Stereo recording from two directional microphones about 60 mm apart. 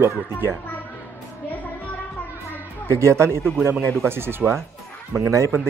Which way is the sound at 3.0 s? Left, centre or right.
Right.